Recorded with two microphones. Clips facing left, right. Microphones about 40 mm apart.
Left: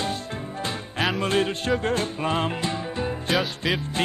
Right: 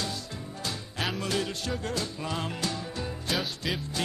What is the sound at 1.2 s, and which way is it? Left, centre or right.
Music, left.